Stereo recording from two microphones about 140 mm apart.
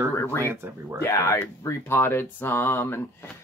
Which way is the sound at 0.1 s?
20° left (ahead or behind).